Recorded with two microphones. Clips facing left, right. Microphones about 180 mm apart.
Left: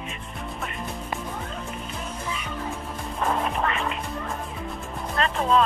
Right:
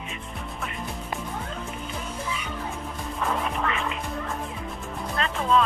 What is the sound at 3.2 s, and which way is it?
Music, 40° left (ahead or behind).